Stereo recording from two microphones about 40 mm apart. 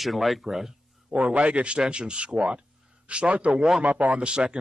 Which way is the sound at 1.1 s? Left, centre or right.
Right.